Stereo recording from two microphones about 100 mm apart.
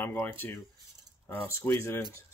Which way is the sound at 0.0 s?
20° left (ahead or behind).